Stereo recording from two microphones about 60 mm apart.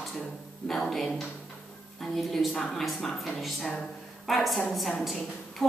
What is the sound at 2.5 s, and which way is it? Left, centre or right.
Speech, centre.